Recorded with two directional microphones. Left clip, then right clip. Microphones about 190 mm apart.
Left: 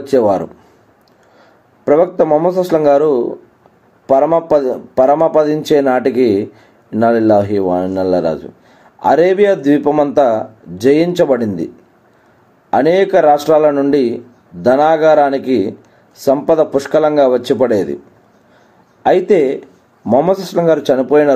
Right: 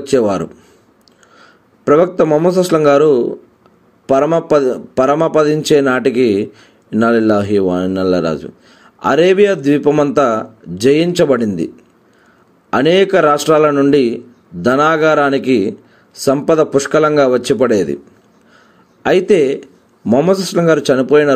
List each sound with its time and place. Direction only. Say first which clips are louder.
0.0 s a man's voice: left 2 dB; 35° right (ahead or behind)
12.7 s a man's voice: even; 35° right (ahead or behind)
19.0 s a man's voice: even; 40° right (ahead or behind)